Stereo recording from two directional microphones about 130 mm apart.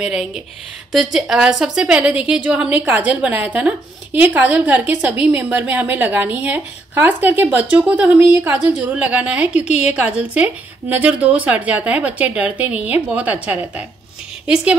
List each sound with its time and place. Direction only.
0.0 s a woman's voice: 5° right (ahead or behind)